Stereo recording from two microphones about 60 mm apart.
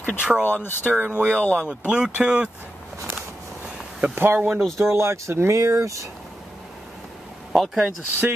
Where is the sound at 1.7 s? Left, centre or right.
Centre.